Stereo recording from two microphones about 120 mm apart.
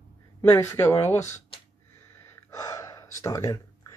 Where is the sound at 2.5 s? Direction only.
30° left (ahead or behind).